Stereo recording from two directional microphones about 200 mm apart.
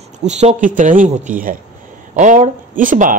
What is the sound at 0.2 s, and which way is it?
Speech, 35° right (ahead or behind).